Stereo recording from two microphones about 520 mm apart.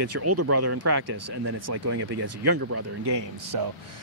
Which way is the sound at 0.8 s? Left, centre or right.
Right.